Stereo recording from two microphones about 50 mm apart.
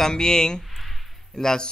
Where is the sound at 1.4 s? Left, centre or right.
Centre.